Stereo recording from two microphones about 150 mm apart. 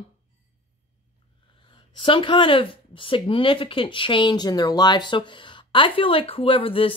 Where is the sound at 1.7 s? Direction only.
35° left (ahead or behind).